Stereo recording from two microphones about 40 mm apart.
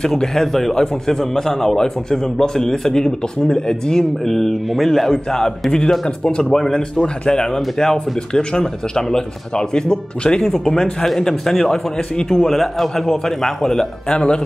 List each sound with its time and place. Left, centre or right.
0.0 s speech: centre
4.3 s speech: centre
14.1 s speech: left